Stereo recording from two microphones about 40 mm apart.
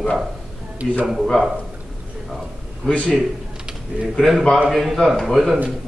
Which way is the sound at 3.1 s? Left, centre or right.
Right.